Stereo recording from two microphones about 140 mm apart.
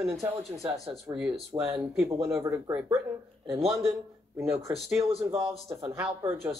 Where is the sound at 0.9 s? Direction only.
5° right (ahead or behind).